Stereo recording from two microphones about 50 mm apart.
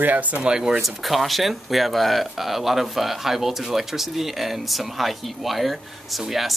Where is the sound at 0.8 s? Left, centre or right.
Centre.